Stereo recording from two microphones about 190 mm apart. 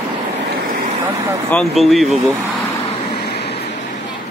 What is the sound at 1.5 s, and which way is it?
Speech, 5° left (ahead or behind).